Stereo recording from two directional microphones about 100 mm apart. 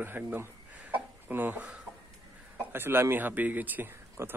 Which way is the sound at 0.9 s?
15° right (ahead or behind).